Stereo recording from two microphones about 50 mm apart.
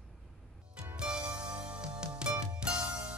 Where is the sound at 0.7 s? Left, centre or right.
Right.